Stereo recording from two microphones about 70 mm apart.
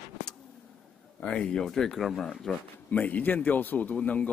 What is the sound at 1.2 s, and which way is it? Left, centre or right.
Speech, centre.